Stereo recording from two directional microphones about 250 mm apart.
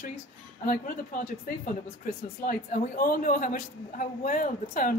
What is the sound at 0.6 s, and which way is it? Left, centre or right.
Speech, left.